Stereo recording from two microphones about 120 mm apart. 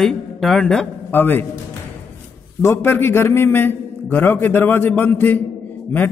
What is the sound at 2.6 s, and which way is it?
A man's voice, 20° left (ahead or behind).